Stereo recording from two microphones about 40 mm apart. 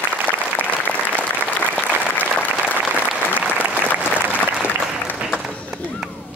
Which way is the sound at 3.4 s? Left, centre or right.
Right.